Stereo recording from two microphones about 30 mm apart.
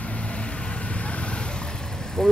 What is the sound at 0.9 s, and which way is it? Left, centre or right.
Vehicle, left.